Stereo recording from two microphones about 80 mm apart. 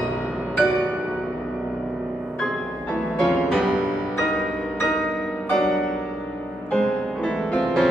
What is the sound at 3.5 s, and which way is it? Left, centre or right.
Music, centre.